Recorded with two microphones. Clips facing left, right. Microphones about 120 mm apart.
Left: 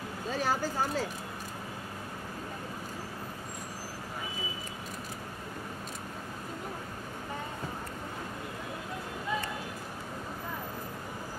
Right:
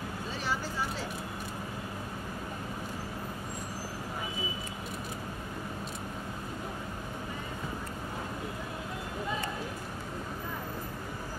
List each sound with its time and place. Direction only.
0.3 s speech: 45° left (ahead or behind)